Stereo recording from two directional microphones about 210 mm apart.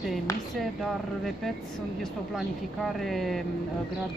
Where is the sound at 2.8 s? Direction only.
Centre (ahead or behind).